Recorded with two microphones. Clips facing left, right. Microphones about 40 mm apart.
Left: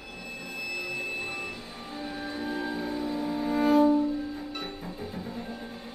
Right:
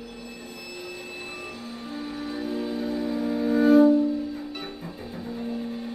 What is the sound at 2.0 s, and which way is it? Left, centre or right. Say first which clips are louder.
Music: right 2 dB; centre.